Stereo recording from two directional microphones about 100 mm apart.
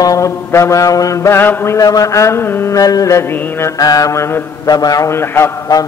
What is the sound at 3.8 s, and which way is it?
Mantra, 35° left (ahead or behind).